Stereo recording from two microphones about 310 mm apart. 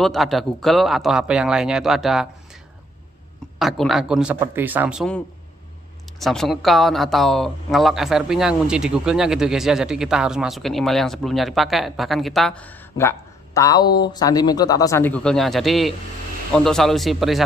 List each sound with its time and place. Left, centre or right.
0.0 s speech: centre
3.5 s a man's voice: centre